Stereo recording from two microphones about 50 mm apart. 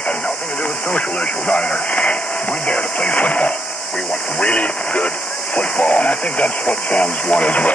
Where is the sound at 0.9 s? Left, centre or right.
Left.